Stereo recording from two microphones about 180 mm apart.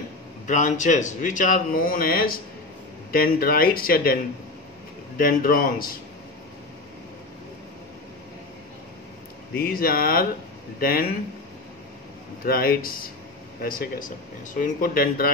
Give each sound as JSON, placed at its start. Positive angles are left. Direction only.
{"t": 0.5, "sound": "a man's voice", "side_deg": 45}
{"t": 9.5, "sound": "speech", "side_deg": 55}
{"t": 12.4, "sound": "a man's voice", "side_deg": 55}